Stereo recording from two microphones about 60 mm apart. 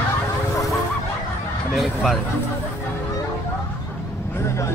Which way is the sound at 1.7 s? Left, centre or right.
Centre.